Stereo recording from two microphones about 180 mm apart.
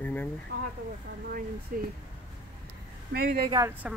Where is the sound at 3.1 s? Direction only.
55° right (ahead or behind).